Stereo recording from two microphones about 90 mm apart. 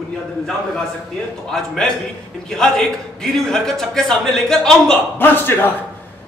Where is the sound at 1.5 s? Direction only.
5° left (ahead or behind).